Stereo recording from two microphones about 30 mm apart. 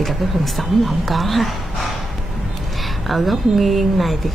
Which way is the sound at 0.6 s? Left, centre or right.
Centre.